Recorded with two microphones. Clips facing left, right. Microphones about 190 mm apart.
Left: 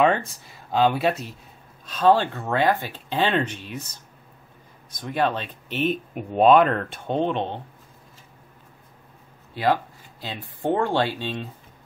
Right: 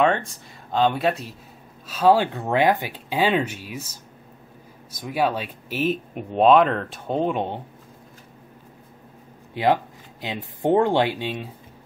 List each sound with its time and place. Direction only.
0.0 s speech: 5° left (ahead or behind)
9.5 s speech: 20° right (ahead or behind)